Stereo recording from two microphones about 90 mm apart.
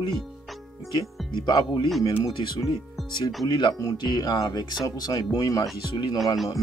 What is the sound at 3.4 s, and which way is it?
Speech, 55° left (ahead or behind).